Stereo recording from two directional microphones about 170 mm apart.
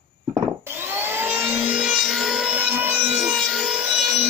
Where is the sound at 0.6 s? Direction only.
10° right (ahead or behind).